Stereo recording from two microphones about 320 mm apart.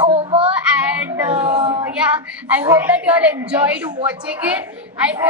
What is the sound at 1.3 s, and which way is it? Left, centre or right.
Speech, centre.